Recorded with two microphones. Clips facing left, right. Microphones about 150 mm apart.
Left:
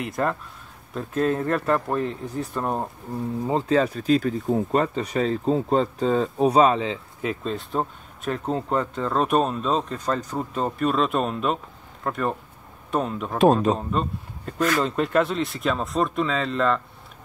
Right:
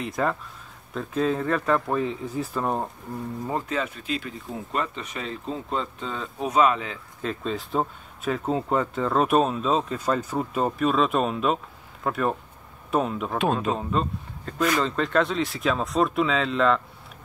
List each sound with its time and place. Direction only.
0.0 s speech: centre (ahead or behind)
3.4 s speech: 20° left (ahead or behind)
3.7 s speech: 35° left (ahead or behind)
7.2 s speech: 10° left (ahead or behind)
7.5 s speech: centre (ahead or behind)
13.4 s speech: 40° left (ahead or behind)
14.0 s speech: centre (ahead or behind)